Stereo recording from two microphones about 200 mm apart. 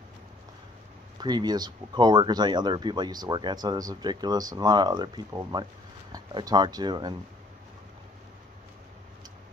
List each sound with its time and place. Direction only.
1.2 s speech: 20° right (ahead or behind)